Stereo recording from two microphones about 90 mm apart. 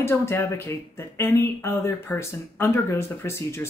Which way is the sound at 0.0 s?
25° left (ahead or behind).